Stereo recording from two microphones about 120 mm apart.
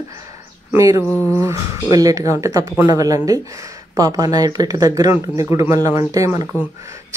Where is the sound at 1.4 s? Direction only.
25° right (ahead or behind).